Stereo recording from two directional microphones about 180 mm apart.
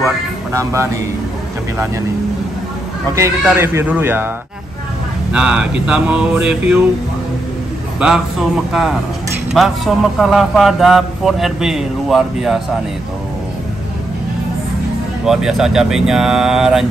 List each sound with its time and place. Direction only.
0.5 s speech: 15° right (ahead or behind)
3.2 s speech: 15° right (ahead or behind)
5.3 s speech: 5° right (ahead or behind)
8.0 s speech: 5° right (ahead or behind)
15.2 s speech: 5° right (ahead or behind)